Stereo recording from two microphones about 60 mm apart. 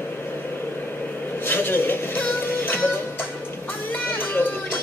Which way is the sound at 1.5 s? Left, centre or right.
Left.